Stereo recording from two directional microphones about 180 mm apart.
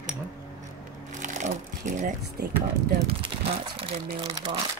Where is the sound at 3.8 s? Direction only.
30° right (ahead or behind).